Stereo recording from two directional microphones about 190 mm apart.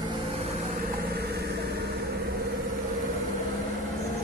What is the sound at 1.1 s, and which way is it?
Vehicle, 55° right (ahead or behind).